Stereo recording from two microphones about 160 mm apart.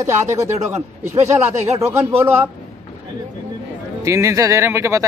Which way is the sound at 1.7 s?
15° right (ahead or behind).